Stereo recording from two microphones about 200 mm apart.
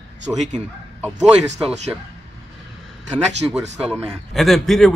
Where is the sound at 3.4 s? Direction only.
Centre (ahead or behind).